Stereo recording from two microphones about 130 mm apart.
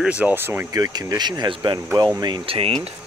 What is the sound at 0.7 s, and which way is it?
Speech, 30° right (ahead or behind).